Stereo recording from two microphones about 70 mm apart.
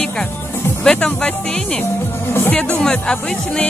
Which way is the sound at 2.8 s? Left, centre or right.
Centre.